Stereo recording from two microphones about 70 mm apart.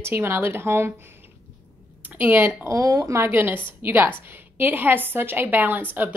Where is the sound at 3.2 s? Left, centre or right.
Right.